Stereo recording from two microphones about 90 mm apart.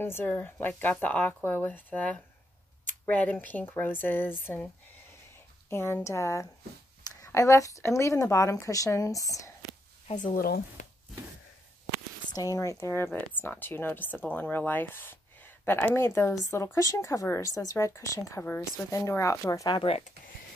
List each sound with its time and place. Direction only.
0.0 s speech: 25° left (ahead or behind)
5.7 s speech: 30° left (ahead or behind)
12.4 s speech: 40° left (ahead or behind)